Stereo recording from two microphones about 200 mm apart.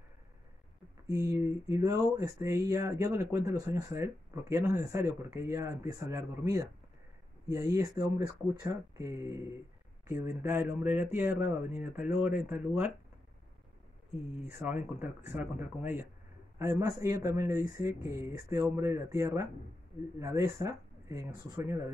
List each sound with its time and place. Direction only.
1.1 s speech: 15° right (ahead or behind)
14.4 s speech: 5° right (ahead or behind)